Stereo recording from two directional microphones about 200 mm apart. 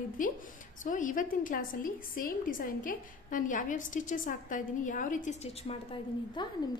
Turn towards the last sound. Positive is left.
turn(degrees=25)  # may be behind; listen again after turning